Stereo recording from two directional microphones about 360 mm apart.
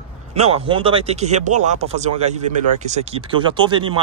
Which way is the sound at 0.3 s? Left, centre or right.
Centre.